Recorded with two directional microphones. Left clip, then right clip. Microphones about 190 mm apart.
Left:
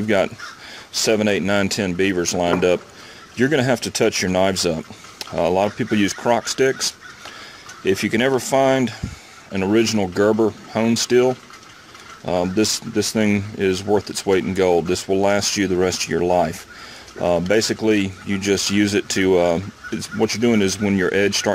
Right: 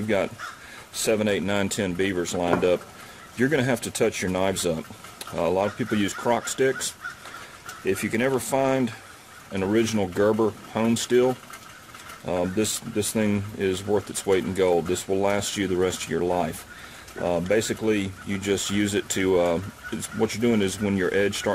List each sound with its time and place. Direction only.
0.0 s speech: 40° left (ahead or behind)